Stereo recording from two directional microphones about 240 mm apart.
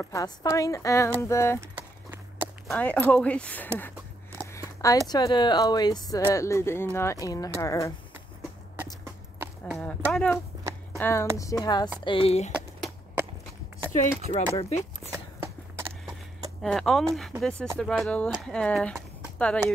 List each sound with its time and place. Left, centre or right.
0.0 s speech: centre
2.7 s speech: centre
9.4 s speech: centre; by 12.5 s left
12.5 s a sound: centre
14.0 s speech: centre
15.1 s walk: centre
16.6 s speech: centre